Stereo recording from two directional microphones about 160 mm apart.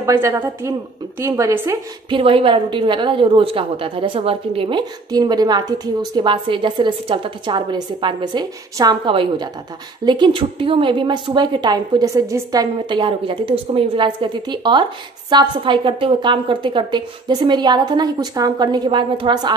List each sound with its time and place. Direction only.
0.0 s a woman's voice: 15° right (ahead or behind)
2.0 s a woman's voice: 35° right (ahead or behind)